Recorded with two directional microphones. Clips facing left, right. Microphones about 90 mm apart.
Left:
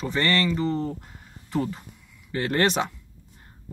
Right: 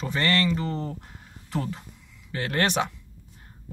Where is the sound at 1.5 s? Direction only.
5° left (ahead or behind).